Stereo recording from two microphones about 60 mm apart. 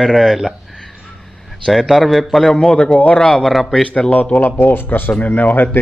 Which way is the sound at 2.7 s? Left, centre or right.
Centre.